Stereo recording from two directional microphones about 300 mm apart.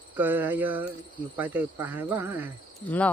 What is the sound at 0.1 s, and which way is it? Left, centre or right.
Speech, centre.